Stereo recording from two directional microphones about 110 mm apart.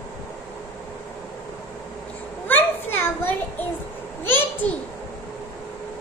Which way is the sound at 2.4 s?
20° left (ahead or behind).